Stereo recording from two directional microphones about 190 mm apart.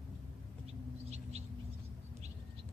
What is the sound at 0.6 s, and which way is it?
Bird, 35° right (ahead or behind).